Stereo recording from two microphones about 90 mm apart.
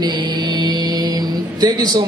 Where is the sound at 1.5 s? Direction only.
50° right (ahead or behind).